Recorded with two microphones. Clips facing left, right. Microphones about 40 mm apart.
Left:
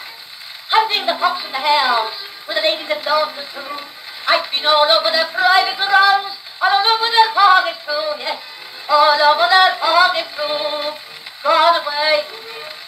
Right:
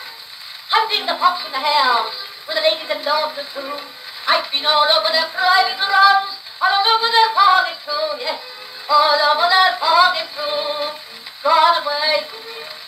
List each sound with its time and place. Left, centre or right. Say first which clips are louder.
0.7 s a sound: left 2 dB; centre
1.0 s speech: right 1 dB; centre
4.6 s synthetic singing: left 3 dB; left
6.6 s speech: left 1 dB; centre
7.1 s synthetic singing: left 2 dB; left
11.8 s speech: left 2 dB; centre